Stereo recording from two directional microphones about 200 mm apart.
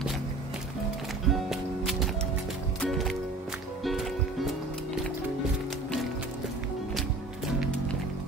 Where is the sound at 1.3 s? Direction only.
Centre (ahead or behind).